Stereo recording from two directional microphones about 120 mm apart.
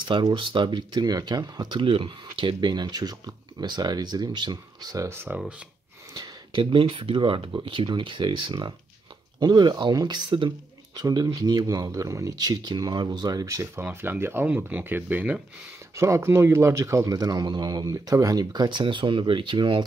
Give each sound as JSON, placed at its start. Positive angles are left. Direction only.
{"t": 0.1, "sound": "speech", "side_deg": -45}
{"t": 6.1, "sound": "speech", "side_deg": -40}
{"t": 15.9, "sound": "speech", "side_deg": -25}